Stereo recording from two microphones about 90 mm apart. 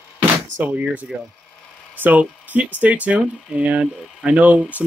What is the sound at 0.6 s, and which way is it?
Speech, 15° right (ahead or behind).